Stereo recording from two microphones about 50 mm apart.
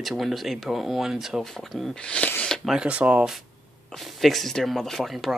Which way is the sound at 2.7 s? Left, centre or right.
Right.